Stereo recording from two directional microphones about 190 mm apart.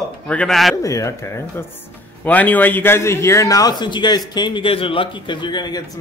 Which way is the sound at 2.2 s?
10° left (ahead or behind).